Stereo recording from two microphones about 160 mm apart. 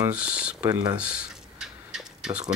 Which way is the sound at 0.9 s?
5° right (ahead or behind).